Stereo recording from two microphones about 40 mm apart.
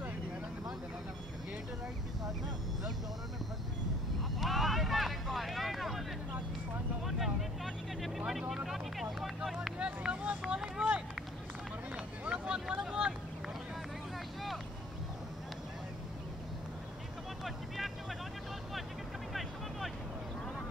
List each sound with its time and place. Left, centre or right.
4.4 s vehicle: centre
7.1 s vehicle: centre
9.8 s vehicle: right
10.4 s vehicle: centre
12.3 s vehicle: right